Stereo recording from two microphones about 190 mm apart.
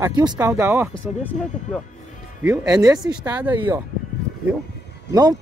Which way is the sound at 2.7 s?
20° right (ahead or behind).